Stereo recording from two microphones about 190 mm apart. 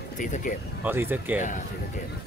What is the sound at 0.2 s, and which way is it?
Speech, 45° left (ahead or behind).